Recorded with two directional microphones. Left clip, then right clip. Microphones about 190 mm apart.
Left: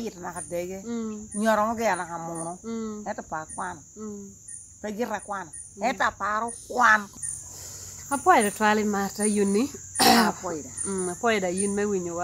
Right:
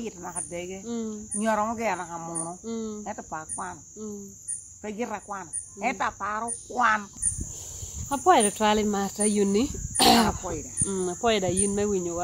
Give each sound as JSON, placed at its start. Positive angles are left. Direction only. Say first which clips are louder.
{"t": 0.0, "sound": "speech", "louder": "left 1 dB", "side_deg": 15}
{"t": 0.8, "sound": "speech", "louder": "even", "side_deg": -10}
{"t": 1.3, "sound": "speech", "louder": "left 3 dB", "side_deg": 15}
{"t": 2.6, "sound": "speech", "louder": "even", "side_deg": -10}
{"t": 3.0, "sound": "speech", "louder": "left 3 dB", "side_deg": 15}
{"t": 4.8, "sound": "speech", "louder": "left 3 dB", "side_deg": 15}
{"t": 8.1, "sound": "speech", "louder": "even", "side_deg": -10}